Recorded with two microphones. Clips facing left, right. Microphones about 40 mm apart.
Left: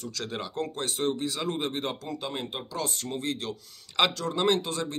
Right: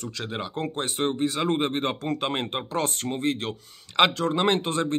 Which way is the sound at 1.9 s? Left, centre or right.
Right.